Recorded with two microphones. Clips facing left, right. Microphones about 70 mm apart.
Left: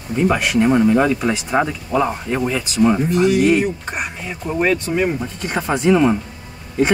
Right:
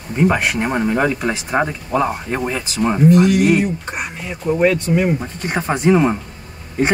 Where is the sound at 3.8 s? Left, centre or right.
Centre.